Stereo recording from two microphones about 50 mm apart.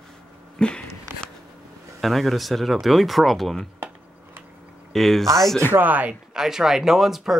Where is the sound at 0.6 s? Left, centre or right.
Centre.